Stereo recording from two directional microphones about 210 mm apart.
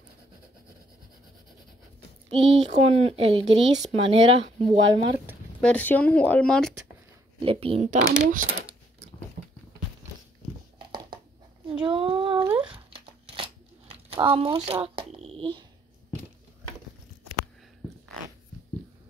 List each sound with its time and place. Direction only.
2.2 s speech: 30° right (ahead or behind)
5.6 s speech: 5° left (ahead or behind)
7.4 s speech: 30° right (ahead or behind)
11.6 s a sound: 25° right (ahead or behind)
12.4 s a sound: 5° right (ahead or behind)
12.7 s tearing: 25° right (ahead or behind)